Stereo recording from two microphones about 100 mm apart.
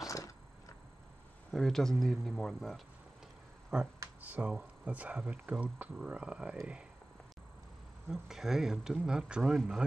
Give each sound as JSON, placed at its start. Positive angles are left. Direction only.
{"t": 1.5, "sound": "speech", "side_deg": 5}
{"t": 3.7, "sound": "speech", "side_deg": -5}
{"t": 8.1, "sound": "speech", "side_deg": -5}